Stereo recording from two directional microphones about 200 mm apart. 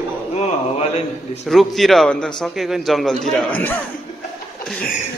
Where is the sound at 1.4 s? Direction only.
Centre (ahead or behind).